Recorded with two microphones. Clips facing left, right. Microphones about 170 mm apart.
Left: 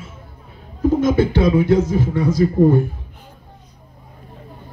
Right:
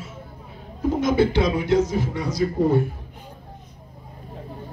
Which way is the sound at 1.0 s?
50° left (ahead or behind).